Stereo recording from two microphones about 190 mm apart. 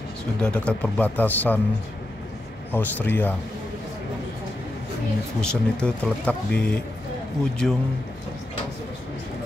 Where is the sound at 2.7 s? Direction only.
10° left (ahead or behind).